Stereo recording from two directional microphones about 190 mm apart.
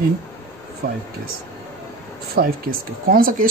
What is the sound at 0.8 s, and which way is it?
Speech, 50° right (ahead or behind).